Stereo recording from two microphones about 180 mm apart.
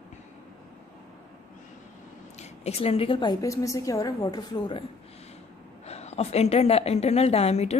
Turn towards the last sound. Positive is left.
turn(degrees=35)  # may be behind; listen again after turning